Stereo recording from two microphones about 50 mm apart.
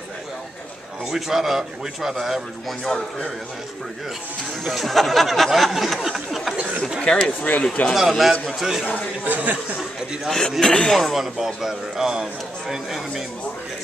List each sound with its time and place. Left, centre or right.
1.0 s a man's voice: centre
2.9 s speech: centre
4.6 s a sound: centre
7.0 s a sound: centre
7.2 s speech: left
8.1 s a sound: centre
9.2 s speech: right
10.6 s speech: centre
11.1 s a man's voice: centre